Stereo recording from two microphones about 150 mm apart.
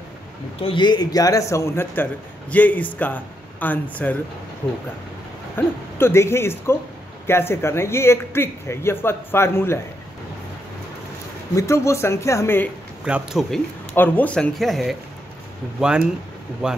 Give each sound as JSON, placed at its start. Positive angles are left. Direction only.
{"t": 0.6, "sound": "a man's voice", "side_deg": 35}
{"t": 5.6, "sound": "speech", "side_deg": 15}
{"t": 11.5, "sound": "a man's voice", "side_deg": 20}
{"t": 13.0, "sound": "speech", "side_deg": -5}
{"t": 13.9, "sound": "speech", "side_deg": 10}